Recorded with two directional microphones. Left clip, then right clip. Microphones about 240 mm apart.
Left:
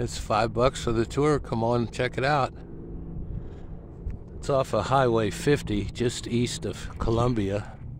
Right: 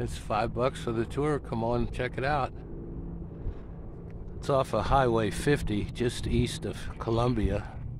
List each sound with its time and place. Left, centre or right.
0.0 s speech: left
4.5 s speech: centre